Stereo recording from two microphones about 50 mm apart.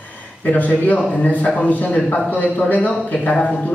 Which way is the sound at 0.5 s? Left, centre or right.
Left.